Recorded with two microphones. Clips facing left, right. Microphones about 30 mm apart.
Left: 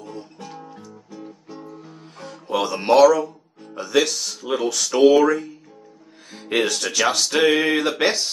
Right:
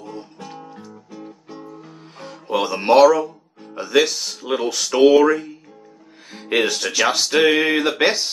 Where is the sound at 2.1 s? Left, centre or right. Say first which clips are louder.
Right 2 dB; centre.